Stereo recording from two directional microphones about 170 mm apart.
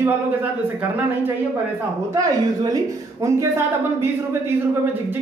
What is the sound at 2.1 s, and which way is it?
Speech, 20° right (ahead or behind).